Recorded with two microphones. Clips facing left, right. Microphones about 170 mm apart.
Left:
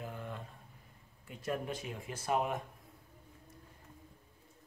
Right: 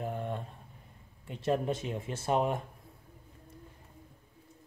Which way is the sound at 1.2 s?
25° right (ahead or behind).